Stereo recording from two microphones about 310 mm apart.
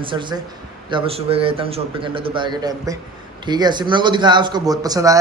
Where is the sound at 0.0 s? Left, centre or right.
Centre.